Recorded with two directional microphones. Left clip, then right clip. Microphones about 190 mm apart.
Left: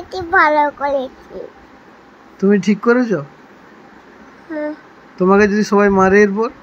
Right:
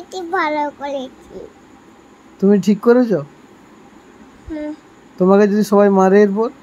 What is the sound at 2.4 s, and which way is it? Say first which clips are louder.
Speech: even; 15° right (ahead or behind).